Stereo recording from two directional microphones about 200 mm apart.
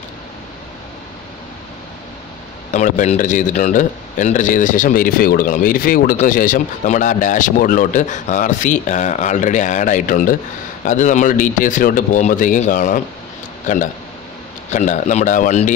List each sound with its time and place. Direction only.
2.7 s a man's voice: 35° left (ahead or behind)